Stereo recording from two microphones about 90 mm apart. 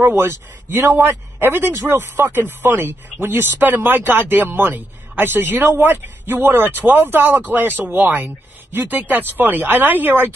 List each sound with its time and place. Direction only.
0.0 s a man's voice: 25° right (ahead or behind)